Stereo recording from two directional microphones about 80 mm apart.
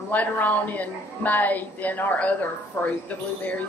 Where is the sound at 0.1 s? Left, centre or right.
Left.